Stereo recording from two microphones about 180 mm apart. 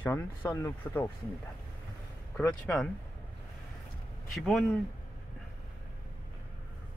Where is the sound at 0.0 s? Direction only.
10° left (ahead or behind).